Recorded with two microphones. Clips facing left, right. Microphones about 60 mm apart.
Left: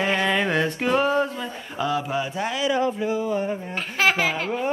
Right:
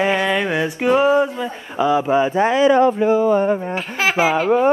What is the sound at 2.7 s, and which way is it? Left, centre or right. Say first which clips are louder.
Speech: right 9 dB; right.